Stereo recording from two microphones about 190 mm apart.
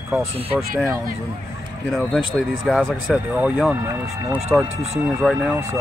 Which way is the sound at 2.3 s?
Centre (ahead or behind).